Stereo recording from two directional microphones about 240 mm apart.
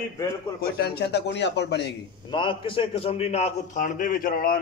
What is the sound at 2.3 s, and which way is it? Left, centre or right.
A man's voice, left.